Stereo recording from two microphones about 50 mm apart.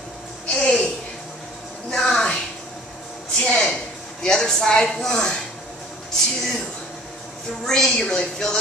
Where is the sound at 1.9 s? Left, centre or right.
Centre.